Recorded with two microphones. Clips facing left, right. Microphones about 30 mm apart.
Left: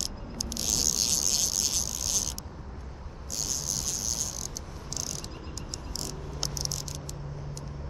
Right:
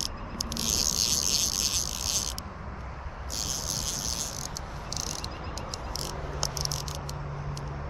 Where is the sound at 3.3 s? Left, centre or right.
Right.